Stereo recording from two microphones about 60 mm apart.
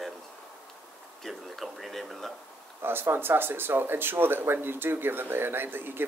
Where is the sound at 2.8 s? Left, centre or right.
Right.